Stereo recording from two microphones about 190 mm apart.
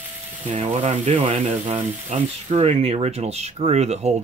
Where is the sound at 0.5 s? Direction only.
35° right (ahead or behind).